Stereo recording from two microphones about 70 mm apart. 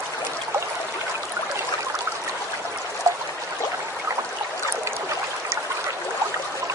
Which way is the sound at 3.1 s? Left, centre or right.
Right.